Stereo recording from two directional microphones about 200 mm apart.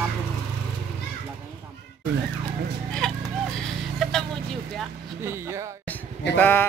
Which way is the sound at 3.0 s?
Centre (ahead or behind).